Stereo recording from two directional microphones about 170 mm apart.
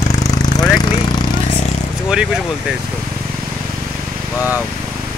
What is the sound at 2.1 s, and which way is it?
Speech, 5° right (ahead or behind).